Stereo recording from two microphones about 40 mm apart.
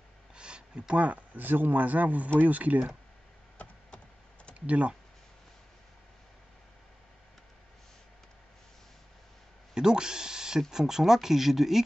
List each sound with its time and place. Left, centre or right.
0.4 s a sound: right
1.0 s speech: right
4.6 s speech: right
9.8 s speech: centre